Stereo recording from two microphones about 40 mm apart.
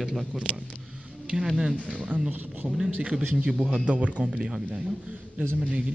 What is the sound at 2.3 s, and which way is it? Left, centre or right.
Speech, right.